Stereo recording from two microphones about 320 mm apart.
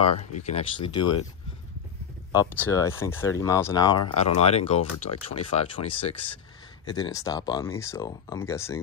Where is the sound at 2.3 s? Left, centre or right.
Centre.